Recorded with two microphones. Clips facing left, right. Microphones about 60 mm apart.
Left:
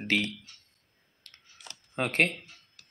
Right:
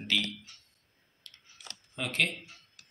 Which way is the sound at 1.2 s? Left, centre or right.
Left.